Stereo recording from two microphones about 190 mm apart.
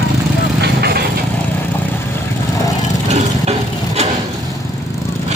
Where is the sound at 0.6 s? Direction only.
55° right (ahead or behind).